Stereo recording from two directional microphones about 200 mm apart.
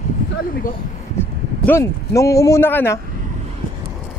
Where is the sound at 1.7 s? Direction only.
15° left (ahead or behind).